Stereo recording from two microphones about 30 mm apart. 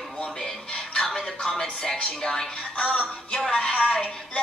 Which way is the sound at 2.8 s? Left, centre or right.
Left.